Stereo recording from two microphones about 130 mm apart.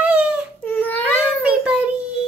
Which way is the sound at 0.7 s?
15° left (ahead or behind).